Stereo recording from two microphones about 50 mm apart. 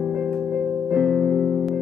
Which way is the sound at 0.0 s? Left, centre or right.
Centre.